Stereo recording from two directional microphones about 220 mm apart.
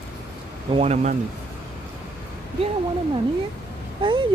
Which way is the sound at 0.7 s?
30° right (ahead or behind).